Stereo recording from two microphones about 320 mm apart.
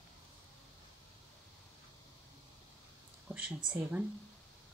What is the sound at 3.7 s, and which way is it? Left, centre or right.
Speech, centre.